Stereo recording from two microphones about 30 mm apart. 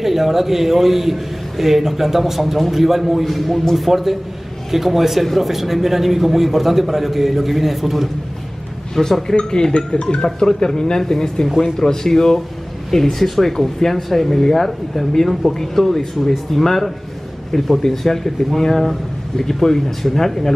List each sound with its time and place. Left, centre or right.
0.0 s a man's voice: centre
8.9 s a man's voice: centre